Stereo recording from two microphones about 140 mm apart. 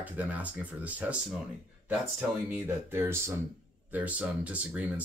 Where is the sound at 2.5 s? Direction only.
15° right (ahead or behind).